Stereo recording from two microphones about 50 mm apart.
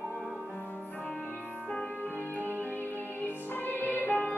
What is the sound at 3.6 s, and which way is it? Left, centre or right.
Music, left.